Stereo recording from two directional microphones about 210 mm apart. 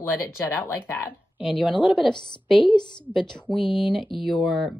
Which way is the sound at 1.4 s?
Centre (ahead or behind).